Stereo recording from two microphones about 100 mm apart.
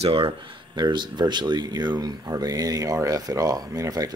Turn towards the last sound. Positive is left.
turn(degrees=-35)  # may be behind; listen again after turning